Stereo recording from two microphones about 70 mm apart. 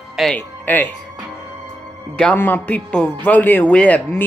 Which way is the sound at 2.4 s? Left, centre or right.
Left.